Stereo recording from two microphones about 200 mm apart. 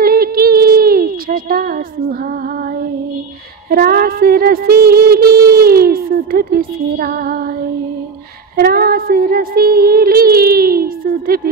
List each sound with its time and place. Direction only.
0.0 s a sound: 50° right (ahead or behind)
3.7 s music: 50° right (ahead or behind)
8.5 s music: 50° right (ahead or behind)